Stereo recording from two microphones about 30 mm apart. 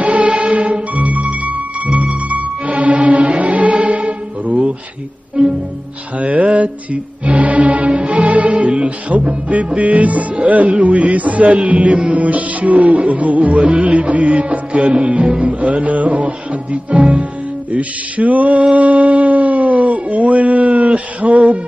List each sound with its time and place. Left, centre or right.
0.0 s music: right
2.2 s music: right
6.1 s music: right
15.4 s music: right